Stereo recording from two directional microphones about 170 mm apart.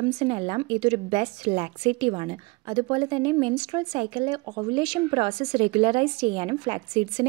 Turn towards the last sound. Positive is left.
turn(degrees=-30)  # may be behind; listen again after turning